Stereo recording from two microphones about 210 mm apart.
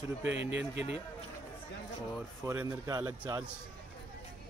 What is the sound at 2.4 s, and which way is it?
A man's voice, 10° right (ahead or behind).